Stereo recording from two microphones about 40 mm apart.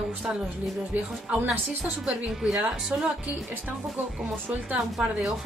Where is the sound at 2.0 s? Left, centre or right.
Centre.